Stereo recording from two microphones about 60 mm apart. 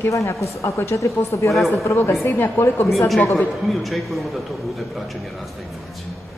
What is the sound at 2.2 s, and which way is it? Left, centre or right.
Speech, left.